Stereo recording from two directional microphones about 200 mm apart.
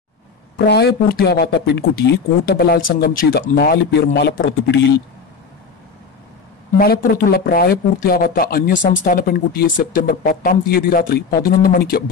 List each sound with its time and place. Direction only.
0.7 s speech: 55° left (ahead or behind)
6.8 s speech: 45° left (ahead or behind)